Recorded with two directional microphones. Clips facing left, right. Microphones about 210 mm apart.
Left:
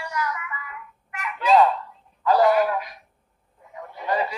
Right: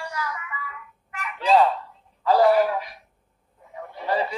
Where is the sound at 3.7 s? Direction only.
30° right (ahead or behind).